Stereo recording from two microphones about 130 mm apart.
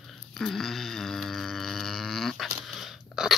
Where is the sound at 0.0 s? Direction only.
Centre (ahead or behind).